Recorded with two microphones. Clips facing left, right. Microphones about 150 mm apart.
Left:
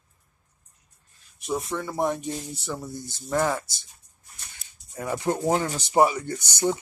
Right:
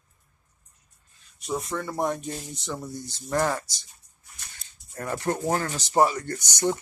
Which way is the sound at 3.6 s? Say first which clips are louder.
Even; 55° left (ahead or behind).